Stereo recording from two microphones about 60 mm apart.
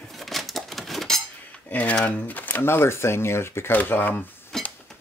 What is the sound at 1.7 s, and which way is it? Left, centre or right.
Speech, left.